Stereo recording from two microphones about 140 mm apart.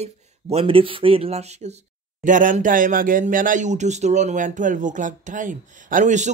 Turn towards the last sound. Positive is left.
turn(degrees=-60)  # may be behind; listen again after turning